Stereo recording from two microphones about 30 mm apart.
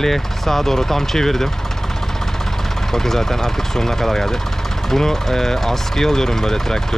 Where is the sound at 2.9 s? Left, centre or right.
Centre.